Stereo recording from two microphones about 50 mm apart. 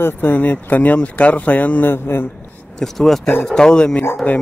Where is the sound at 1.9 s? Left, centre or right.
Left.